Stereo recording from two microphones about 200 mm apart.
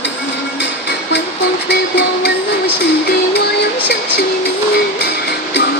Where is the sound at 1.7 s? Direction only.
60° left (ahead or behind).